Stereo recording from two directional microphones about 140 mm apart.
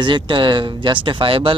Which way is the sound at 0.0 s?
35° right (ahead or behind).